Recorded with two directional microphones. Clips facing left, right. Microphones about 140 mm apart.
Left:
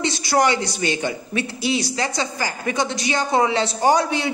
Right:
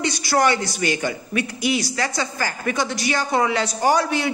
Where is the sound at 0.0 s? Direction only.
25° left (ahead or behind).